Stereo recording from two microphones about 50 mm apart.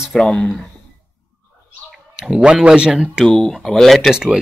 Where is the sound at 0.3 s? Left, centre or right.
Centre.